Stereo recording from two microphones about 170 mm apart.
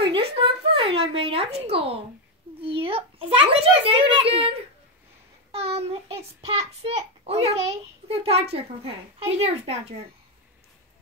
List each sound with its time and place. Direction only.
0.1 s a sound: 35° right (ahead or behind)
2.6 s a child's voice: 30° right (ahead or behind)
5.5 s a child's voice: 35° right (ahead or behind)